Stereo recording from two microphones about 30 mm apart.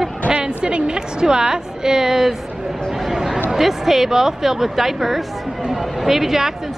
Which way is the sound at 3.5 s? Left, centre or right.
Centre.